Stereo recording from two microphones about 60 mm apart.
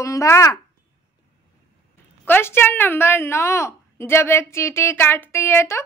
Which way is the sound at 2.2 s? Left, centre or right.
Left.